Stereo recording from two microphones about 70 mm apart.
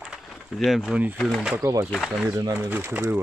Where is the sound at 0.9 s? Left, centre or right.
Right.